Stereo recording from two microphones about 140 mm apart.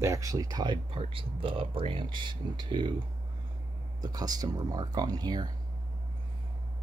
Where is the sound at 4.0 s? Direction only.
30° right (ahead or behind).